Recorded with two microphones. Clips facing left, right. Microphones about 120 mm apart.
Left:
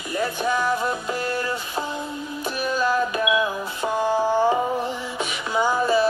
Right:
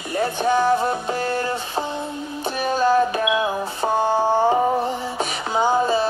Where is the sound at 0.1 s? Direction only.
30° right (ahead or behind).